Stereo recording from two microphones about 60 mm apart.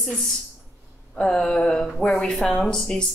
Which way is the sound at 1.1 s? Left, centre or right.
Centre.